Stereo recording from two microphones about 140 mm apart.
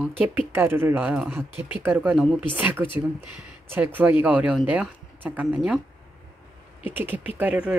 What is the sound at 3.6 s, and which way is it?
Speech, 15° right (ahead or behind).